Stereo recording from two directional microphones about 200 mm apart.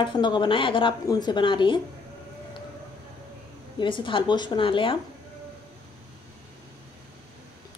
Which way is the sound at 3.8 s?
25° left (ahead or behind).